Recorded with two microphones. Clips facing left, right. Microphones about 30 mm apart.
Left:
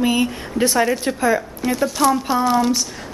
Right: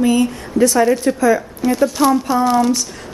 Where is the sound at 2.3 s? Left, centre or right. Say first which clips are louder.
Right 3 dB; centre.